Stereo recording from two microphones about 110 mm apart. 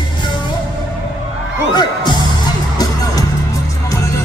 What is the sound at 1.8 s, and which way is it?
Music, 45° left (ahead or behind).